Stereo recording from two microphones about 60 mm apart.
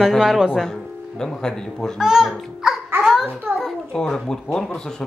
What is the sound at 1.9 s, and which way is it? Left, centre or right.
Speech, centre.